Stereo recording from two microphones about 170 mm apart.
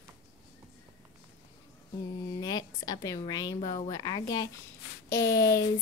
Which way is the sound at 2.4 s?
25° left (ahead or behind).